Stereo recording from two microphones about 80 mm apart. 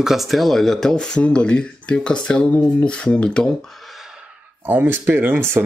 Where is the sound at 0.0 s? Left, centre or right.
Centre.